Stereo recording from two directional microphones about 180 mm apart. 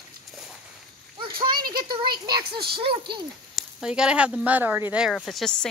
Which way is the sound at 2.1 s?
25° right (ahead or behind).